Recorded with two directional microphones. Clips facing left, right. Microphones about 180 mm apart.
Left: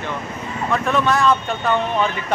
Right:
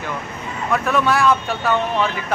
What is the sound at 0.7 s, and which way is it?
Speech, 5° right (ahead or behind).